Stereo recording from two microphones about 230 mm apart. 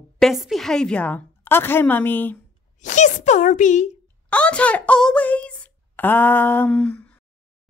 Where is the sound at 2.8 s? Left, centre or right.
Left.